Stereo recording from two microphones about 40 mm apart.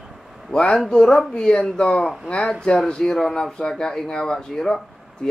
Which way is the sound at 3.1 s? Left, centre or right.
Centre.